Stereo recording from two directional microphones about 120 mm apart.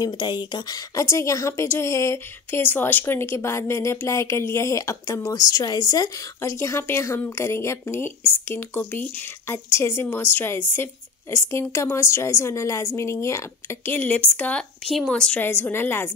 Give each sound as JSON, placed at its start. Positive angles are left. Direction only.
{"t": 0.0, "sound": "a woman's voice", "side_deg": 35}
{"t": 15.4, "sound": "a woman's voice", "side_deg": 20}